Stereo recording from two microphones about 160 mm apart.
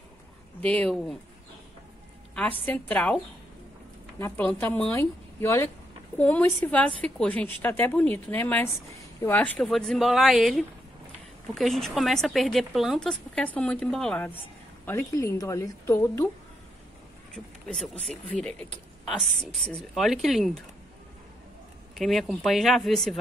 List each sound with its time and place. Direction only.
0.6 s a woman's voice: 10° left (ahead or behind)
2.6 s a woman's voice: 10° left (ahead or behind)
4.2 s a woman's voice: 10° left (ahead or behind)
18.0 s speech: 5° left (ahead or behind)
21.9 s speech: centre (ahead or behind)